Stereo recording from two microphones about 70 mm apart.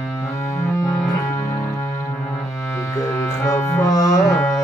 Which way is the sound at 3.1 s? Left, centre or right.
Left.